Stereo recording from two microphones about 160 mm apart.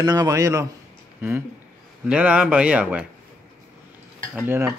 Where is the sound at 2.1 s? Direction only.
5° right (ahead or behind).